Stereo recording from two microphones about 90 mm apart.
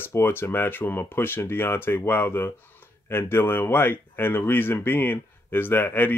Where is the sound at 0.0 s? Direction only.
25° left (ahead or behind).